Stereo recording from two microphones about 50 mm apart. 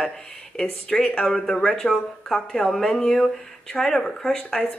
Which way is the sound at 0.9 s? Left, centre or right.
Left.